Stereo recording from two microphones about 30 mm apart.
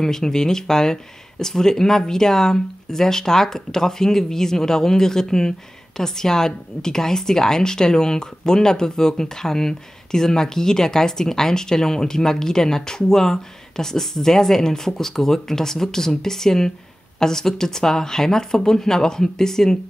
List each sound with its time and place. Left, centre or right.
0.0 s a woman's voice: centre